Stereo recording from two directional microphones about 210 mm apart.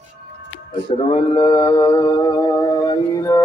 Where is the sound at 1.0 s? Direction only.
25° left (ahead or behind).